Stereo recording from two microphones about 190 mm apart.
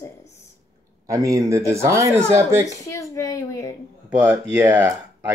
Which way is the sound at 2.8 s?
15° left (ahead or behind).